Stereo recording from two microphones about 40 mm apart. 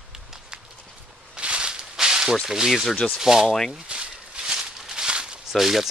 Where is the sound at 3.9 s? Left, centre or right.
Right.